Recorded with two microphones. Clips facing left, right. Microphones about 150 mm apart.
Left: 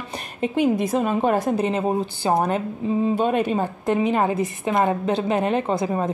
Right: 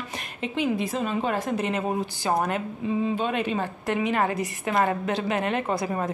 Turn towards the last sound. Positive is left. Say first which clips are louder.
# left 4 dB
turn(degrees=20)  # may be behind; listen again after turning